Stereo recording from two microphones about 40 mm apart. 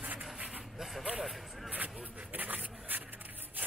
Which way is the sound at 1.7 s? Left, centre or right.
Right.